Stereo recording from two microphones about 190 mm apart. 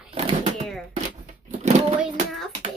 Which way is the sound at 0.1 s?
30° right (ahead or behind).